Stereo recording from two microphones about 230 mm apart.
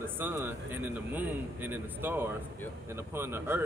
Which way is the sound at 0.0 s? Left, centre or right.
Centre.